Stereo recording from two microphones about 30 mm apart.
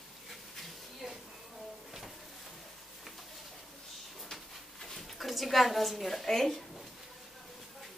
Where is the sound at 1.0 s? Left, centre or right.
Centre.